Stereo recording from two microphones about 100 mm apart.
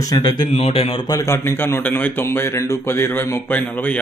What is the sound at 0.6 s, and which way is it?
Speech, 75° left (ahead or behind).